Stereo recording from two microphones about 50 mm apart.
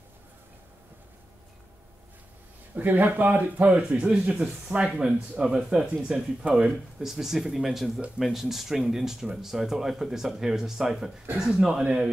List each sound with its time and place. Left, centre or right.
2.7 s speech: right; by 12.1 s centre